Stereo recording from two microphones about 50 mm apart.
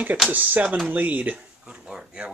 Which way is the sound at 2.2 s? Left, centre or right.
Right.